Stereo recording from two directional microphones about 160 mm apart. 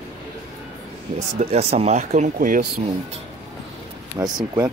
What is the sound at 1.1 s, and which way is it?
Speech, 40° right (ahead or behind).